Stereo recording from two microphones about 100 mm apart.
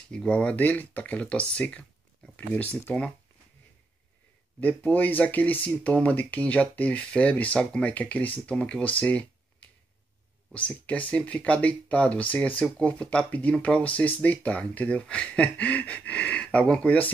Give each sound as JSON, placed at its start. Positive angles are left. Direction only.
{"t": 0.1, "sound": "speech", "side_deg": 10}
{"t": 4.6, "sound": "speech", "side_deg": 15}
{"t": 9.0, "sound": "a sound", "side_deg": 15}
{"t": 10.5, "sound": "speech", "side_deg": 15}